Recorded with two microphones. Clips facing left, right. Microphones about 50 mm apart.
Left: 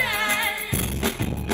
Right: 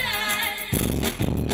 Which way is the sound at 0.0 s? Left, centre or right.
Left.